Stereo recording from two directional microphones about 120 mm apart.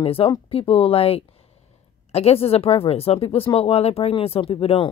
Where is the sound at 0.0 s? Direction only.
50° left (ahead or behind).